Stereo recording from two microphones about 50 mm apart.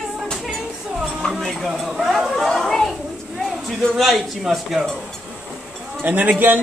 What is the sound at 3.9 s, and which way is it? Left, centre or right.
Speech, centre.